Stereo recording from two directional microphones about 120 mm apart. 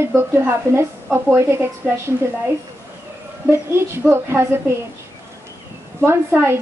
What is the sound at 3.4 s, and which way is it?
A woman's voice, 20° right (ahead or behind).